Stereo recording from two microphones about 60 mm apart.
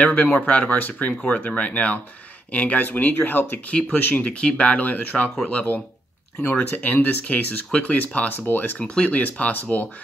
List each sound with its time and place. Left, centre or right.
0.0 s speech: left
6.4 s speech: left
8.7 s speech: centre